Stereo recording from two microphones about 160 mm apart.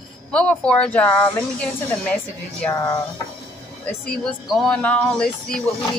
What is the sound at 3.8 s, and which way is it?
Speech, 5° left (ahead or behind).